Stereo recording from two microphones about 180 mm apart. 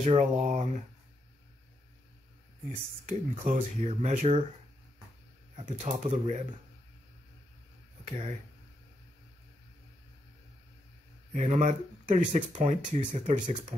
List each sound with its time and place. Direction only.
0.0 s speech: 40° right (ahead or behind)
3.1 s speech: 40° right (ahead or behind)
5.6 s speech: 40° right (ahead or behind)
11.3 s speech: 40° right (ahead or behind)